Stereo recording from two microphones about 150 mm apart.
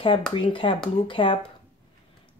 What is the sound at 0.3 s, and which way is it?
Speech, 35° left (ahead or behind).